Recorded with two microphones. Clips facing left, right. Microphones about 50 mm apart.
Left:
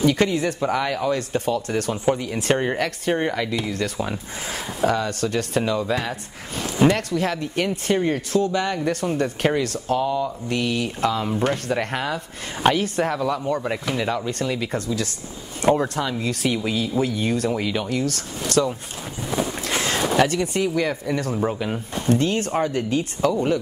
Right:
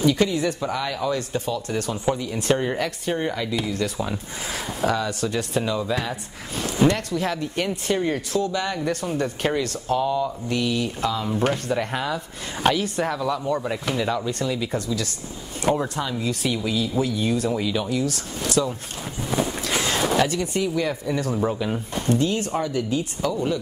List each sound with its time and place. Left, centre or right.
0.0 s speech: left
15.6 s speech: left
15.9 s speech: left
19.7 s speech: left